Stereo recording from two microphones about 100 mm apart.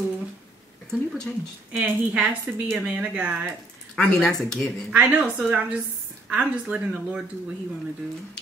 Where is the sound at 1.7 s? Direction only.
15° right (ahead or behind).